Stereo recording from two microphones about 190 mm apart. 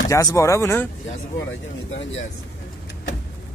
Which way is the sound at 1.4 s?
80° left.